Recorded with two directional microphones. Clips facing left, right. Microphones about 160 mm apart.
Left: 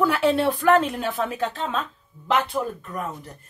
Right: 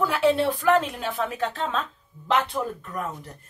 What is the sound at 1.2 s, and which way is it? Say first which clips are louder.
Speech: left 1 dB; 40° left (ahead or behind).